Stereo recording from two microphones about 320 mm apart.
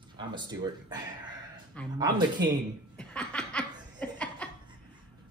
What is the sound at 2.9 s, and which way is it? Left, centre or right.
Laughter, centre.